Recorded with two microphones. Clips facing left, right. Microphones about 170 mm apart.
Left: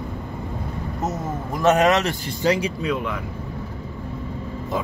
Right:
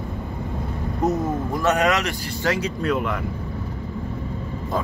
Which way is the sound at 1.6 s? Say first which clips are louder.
Left 4 dB; 25° left (ahead or behind).